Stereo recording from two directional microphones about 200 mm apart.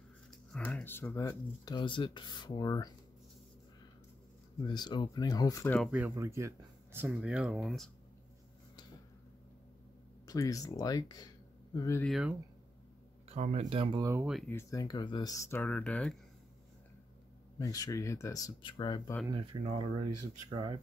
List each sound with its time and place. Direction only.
0.7 s speech: 10° left (ahead or behind)
4.6 s speech: 20° left (ahead or behind)
5.8 s speech: 5° right (ahead or behind)
10.2 s speech: 15° left (ahead or behind)
12.0 s speech: centre (ahead or behind)
13.3 s speech: 35° right (ahead or behind)
14.0 s speech: 10° right (ahead or behind)
14.5 s speech: 15° left (ahead or behind)
17.6 s speech: 20° left (ahead or behind)
19.2 s speech: 20° right (ahead or behind)